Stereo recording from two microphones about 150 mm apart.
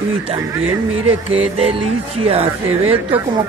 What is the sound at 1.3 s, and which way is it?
Speech, 40° right (ahead or behind).